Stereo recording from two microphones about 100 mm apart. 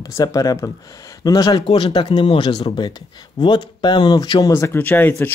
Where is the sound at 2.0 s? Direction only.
65° left (ahead or behind); by 5.1 s 20° left (ahead or behind).